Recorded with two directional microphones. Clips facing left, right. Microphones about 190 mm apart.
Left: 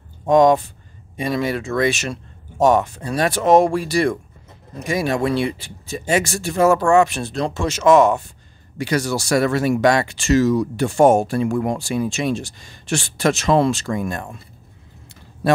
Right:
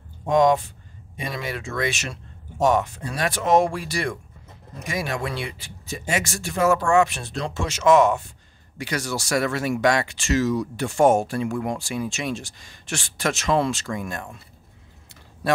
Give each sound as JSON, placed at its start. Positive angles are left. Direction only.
{"t": 0.3, "sound": "speech", "side_deg": 40}